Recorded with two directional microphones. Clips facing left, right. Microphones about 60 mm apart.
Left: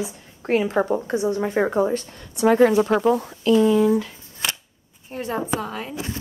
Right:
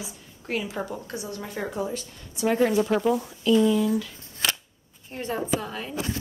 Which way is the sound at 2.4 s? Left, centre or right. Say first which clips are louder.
Left 6 dB; left.